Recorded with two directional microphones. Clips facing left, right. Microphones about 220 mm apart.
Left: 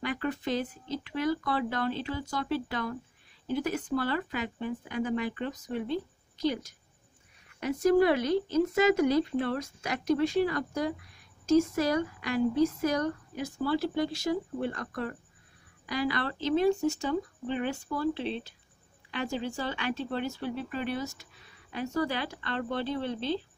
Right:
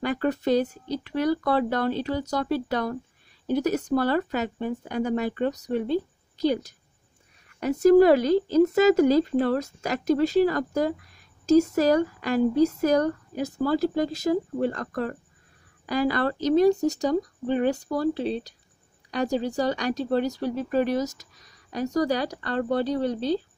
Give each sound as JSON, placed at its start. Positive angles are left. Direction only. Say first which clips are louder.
{"t": 0.0, "sound": "speech", "louder": "right 7 dB", "side_deg": -40}
{"t": 7.6, "sound": "speech", "louder": "right 7 dB", "side_deg": -40}